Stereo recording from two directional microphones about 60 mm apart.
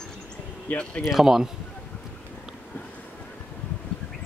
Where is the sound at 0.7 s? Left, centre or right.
Left.